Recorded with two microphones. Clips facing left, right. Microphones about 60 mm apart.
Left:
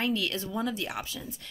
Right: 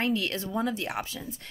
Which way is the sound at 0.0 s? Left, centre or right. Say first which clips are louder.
Right 1 dB; right.